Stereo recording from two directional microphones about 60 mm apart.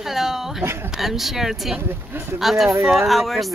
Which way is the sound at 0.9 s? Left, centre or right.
Centre.